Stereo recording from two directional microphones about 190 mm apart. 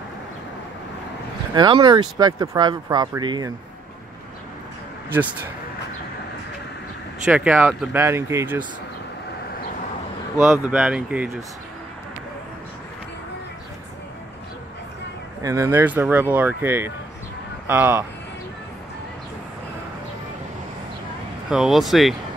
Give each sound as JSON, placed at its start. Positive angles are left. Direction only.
{"t": 1.5, "sound": "speech", "side_deg": -25}
{"t": 7.2, "sound": "speech", "side_deg": -5}
{"t": 10.4, "sound": "speech", "side_deg": -10}
{"t": 15.4, "sound": "speech", "side_deg": -15}
{"t": 21.5, "sound": "speech", "side_deg": -5}